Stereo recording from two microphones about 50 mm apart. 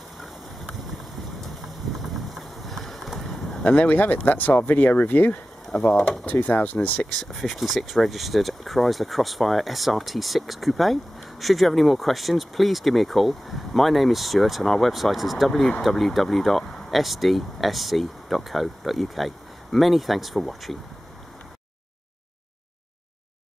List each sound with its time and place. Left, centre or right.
2.3 s clip-clop: centre
3.6 s speech: left
5.8 s speech: centre
6.0 s speech: left
7.1 s speech: centre